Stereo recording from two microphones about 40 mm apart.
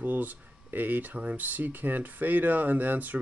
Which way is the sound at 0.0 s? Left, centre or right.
Right.